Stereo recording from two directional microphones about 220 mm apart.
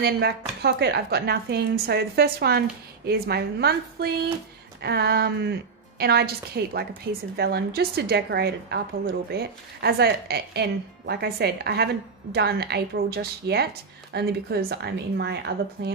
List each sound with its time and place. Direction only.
0.0 s a woman's voice: 45° right (ahead or behind)